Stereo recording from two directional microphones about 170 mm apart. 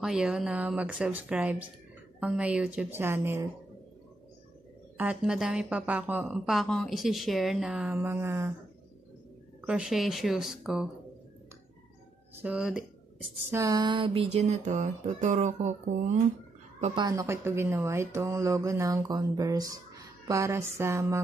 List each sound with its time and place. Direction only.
0.0 s speech: 5° right (ahead or behind)
4.9 s speech: 5° right (ahead or behind)
9.7 s speech: 5° right (ahead or behind)
12.4 s speech: 5° right (ahead or behind)
13.5 s a sound: 20° right (ahead or behind); by 16.2 s 45° right (ahead or behind)
16.9 s speech: 20° right (ahead or behind)